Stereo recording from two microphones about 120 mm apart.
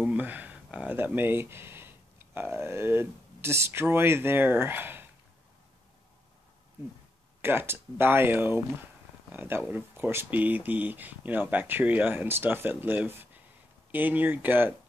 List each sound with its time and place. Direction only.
0.0 s speech: 15° right (ahead or behind)
7.4 s speech: 20° right (ahead or behind)